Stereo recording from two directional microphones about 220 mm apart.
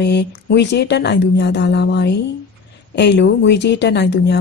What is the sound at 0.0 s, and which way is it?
Speech, 50° left (ahead or behind).